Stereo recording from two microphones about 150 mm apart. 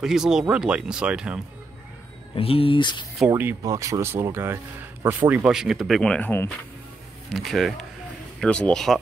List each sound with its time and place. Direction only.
0.0 s speech: 5° right (ahead or behind)
2.3 s speech: 40° left (ahead or behind)
3.3 s speech: 15° right (ahead or behind)
5.5 s speech: 5° right (ahead or behind); by 6.5 s 15° left (ahead or behind)
7.3 s speech: centre (ahead or behind)